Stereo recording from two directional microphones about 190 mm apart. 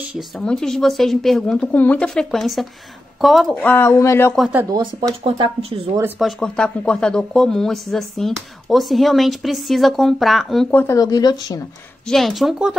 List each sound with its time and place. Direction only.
0.5 s speech: 5° left (ahead or behind)
4.4 s speech: 10° right (ahead or behind)
4.7 s speech: 25° right (ahead or behind)
6.1 s speech: centre (ahead or behind)
11.0 s speech: 20° left (ahead or behind)
12.1 s speech: centre (ahead or behind)